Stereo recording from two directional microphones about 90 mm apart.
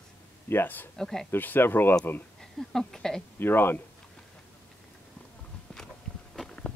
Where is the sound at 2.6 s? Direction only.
5° left (ahead or behind).